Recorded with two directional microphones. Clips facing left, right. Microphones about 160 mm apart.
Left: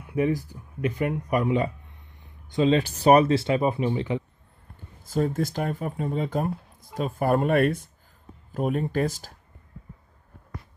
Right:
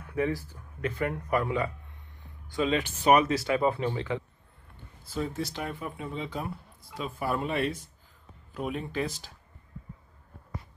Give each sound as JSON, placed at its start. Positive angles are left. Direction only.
{"t": 0.0, "sound": "speech", "side_deg": 15}
{"t": 5.0, "sound": "speech", "side_deg": 45}